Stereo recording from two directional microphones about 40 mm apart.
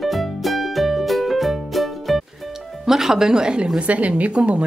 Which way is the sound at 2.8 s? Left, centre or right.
Centre.